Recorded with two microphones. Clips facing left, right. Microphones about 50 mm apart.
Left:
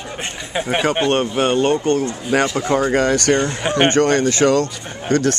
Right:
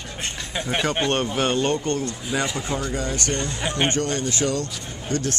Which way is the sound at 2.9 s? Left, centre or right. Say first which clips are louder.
Left 11 dB; left.